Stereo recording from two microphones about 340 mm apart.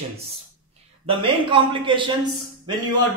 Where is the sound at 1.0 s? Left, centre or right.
Centre.